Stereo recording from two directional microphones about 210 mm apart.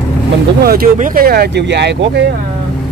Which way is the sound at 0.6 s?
45° right (ahead or behind).